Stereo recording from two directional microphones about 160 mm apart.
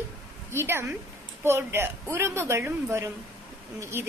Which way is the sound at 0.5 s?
15° right (ahead or behind).